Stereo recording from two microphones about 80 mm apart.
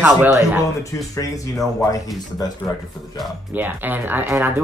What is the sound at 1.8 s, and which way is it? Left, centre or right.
Speech, left.